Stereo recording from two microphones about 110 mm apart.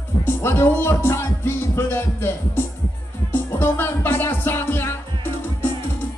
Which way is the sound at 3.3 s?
20° left (ahead or behind).